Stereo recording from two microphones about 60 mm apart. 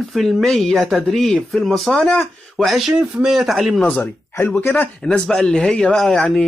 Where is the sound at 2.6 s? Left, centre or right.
Centre.